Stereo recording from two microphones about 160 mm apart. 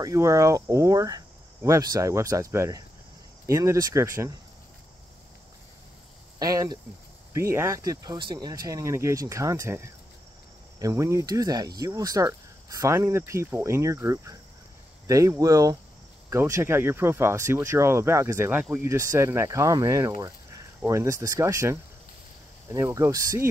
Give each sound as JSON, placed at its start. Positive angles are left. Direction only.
{"t": 0.0, "sound": "speech", "side_deg": -20}
{"t": 6.4, "sound": "speech", "side_deg": -20}